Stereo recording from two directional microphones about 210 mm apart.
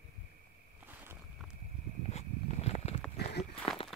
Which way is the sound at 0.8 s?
10° right (ahead or behind).